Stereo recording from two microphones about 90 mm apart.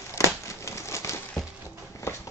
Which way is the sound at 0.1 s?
35° left (ahead or behind).